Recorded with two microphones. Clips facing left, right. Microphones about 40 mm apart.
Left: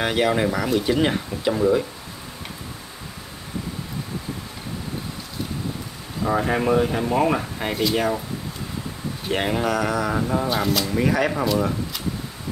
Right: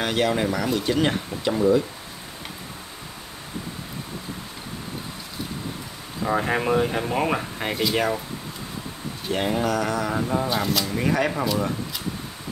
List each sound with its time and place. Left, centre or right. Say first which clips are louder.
0.0 s speech: left 2 dB; centre
6.2 s speech: left 2 dB; centre
9.3 s speech: left 1 dB; left
9.6 s speech: left 1 dB; centre